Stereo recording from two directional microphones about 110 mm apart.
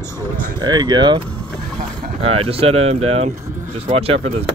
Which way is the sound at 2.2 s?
60° right (ahead or behind).